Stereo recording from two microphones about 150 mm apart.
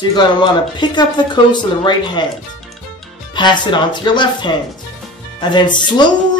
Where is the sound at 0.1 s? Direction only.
30° left (ahead or behind).